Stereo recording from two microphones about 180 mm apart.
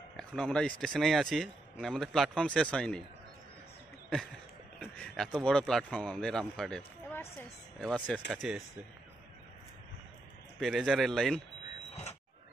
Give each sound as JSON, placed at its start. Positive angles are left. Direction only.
{"t": 0.2, "sound": "speech", "side_deg": 5}
{"t": 4.7, "sound": "speech", "side_deg": 5}
{"t": 10.6, "sound": "speech", "side_deg": 0}
{"t": 11.9, "sound": "a sound", "side_deg": 40}